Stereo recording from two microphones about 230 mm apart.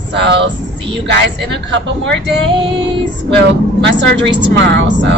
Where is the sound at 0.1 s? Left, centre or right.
Right.